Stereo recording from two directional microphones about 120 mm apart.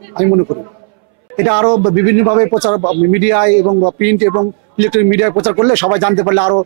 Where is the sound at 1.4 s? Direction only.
15° right (ahead or behind).